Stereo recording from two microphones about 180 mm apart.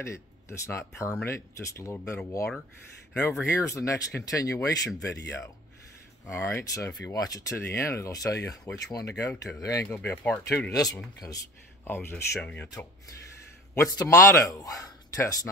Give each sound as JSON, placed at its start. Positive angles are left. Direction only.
{"t": 0.0, "sound": "speech", "side_deg": 15}
{"t": 6.2, "sound": "speech", "side_deg": 15}
{"t": 9.9, "sound": "speech", "side_deg": 10}